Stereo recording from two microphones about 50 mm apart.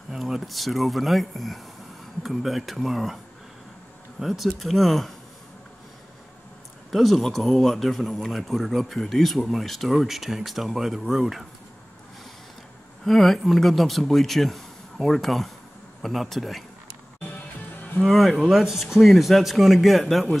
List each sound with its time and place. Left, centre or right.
0.1 s speech: centre
4.2 s speech: centre
6.9 s speech: centre
13.0 s speech: centre
18.0 s speech: centre